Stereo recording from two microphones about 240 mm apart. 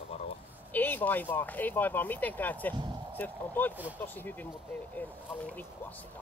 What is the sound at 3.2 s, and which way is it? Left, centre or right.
Speech, centre.